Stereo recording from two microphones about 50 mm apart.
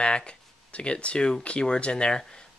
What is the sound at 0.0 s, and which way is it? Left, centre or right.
Speech, left.